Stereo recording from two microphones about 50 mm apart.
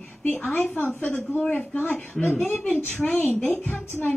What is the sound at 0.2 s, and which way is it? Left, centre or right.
A woman's voice, left.